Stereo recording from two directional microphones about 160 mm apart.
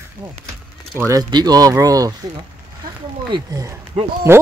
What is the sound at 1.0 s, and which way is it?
Speech, 25° right (ahead or behind).